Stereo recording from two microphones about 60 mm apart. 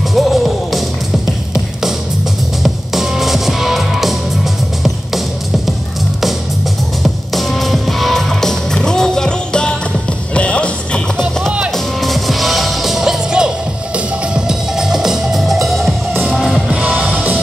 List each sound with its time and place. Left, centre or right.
0.1 s music: centre
7.0 s music: centre
11.7 s music: centre
16.6 s music: centre